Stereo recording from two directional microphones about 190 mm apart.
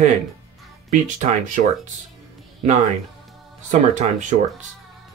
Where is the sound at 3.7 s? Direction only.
40° right (ahead or behind).